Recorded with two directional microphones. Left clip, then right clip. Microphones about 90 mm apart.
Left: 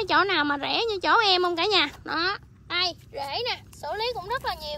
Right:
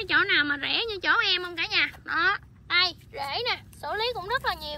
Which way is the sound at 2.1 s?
45° left (ahead or behind).